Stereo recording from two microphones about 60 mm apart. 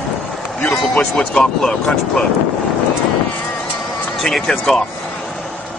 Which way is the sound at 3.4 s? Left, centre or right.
Centre.